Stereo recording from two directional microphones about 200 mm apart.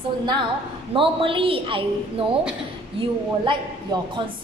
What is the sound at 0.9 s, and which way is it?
Speech, 25° right (ahead or behind).